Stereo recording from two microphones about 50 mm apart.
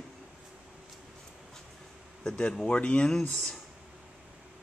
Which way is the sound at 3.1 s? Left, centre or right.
Centre.